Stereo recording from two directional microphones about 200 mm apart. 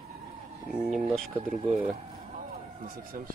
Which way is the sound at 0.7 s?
Centre (ahead or behind).